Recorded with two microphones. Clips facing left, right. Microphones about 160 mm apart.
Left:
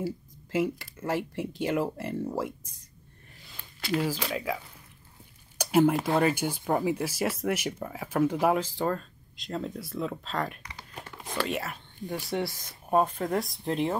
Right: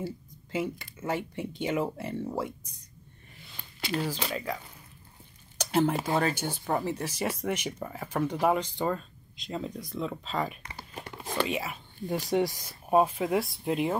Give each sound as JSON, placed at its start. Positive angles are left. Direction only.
{"t": 0.0, "sound": "speech", "side_deg": 5}
{"t": 4.3, "sound": "speech", "side_deg": 5}
{"t": 5.6, "sound": "a sound", "side_deg": 10}
{"t": 5.9, "sound": "speech", "side_deg": 0}
{"t": 10.6, "sound": "crumpling", "side_deg": -30}
{"t": 11.2, "sound": "speech", "side_deg": 0}
{"t": 12.1, "sound": "speech", "side_deg": -15}